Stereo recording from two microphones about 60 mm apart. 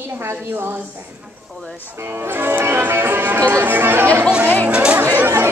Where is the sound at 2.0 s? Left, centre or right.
Right.